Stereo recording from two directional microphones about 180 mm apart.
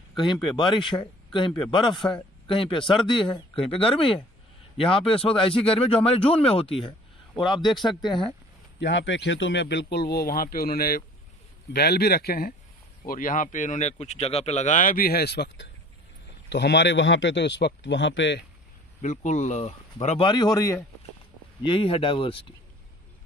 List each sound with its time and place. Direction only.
0.3 s speech: 25° left (ahead or behind)
2.0 s speech: 5° left (ahead or behind)
2.4 s speech: 30° left (ahead or behind)
7.7 s speech: centre (ahead or behind)
8.7 s a man's voice: 80° left
18.9 s speech: 40° left (ahead or behind)
20.2 s speech: 20° left (ahead or behind)
21.6 s speech: 30° left (ahead or behind)